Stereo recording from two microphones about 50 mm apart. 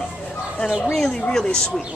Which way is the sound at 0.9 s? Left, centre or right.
Centre.